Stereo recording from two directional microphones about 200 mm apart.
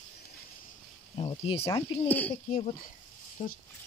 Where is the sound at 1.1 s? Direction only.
30° left (ahead or behind).